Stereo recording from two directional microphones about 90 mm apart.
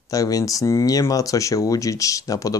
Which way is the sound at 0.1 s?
40° left (ahead or behind).